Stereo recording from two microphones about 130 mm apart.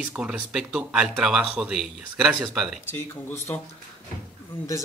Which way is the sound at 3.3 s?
20° left (ahead or behind).